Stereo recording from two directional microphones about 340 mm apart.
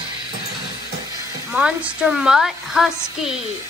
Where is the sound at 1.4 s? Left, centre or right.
Centre.